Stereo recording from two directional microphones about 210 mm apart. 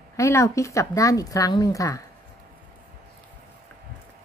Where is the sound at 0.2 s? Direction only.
15° left (ahead or behind).